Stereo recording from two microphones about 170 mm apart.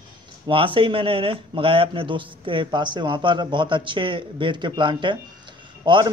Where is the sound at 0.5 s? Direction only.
30° right (ahead or behind).